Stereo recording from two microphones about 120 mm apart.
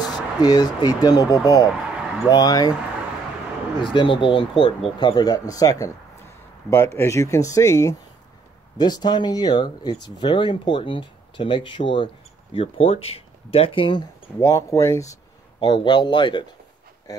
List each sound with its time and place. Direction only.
0.0 s speech: 35° left (ahead or behind)
1.7 s a sound: 5° right (ahead or behind)
2.2 s speech: 30° left (ahead or behind)
3.8 s speech: 40° left (ahead or behind)
12.5 s speech: 55° left (ahead or behind)
14.4 s speech: 25° left (ahead or behind)
15.6 s speech: 40° left (ahead or behind)